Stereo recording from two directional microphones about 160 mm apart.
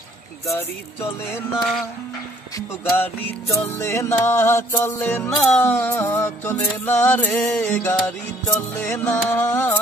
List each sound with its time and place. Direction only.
0.5 s music: 15° left (ahead or behind)
1.5 s music: centre (ahead or behind)
2.5 s speech: 20° left (ahead or behind)
3.7 s music: 20° left (ahead or behind)